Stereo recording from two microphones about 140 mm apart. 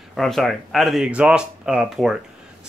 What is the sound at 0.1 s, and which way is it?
Speech, centre (ahead or behind).